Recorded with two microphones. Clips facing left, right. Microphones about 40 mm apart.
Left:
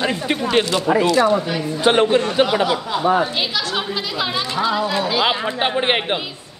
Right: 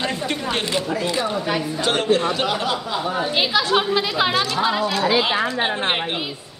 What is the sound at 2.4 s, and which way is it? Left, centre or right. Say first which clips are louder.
Speech: left 4 dB; centre.